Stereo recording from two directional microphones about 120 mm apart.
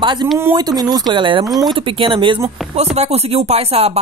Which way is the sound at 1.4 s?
Centre (ahead or behind).